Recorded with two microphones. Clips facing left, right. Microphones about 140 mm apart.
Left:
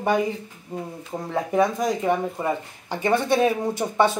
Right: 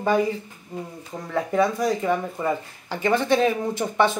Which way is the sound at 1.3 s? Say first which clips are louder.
Even; 20° left (ahead or behind).